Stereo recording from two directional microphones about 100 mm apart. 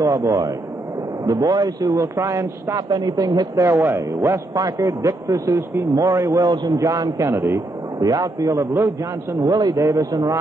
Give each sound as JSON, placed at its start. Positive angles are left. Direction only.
{"t": 0.0, "sound": "a man's voice", "side_deg": -35}
{"t": 3.6, "sound": "a man's voice", "side_deg": -25}
{"t": 8.0, "sound": "a man's voice", "side_deg": -35}
{"t": 9.4, "sound": "a man's voice", "side_deg": -40}